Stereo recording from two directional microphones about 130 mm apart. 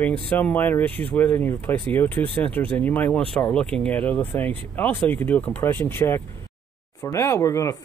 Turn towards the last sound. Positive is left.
turn(degrees=25)  # may be behind; listen again after turning